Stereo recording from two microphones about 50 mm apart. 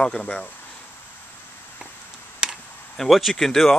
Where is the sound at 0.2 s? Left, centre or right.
Left.